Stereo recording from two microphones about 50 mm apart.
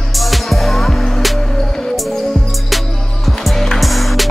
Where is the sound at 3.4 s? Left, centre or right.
Centre.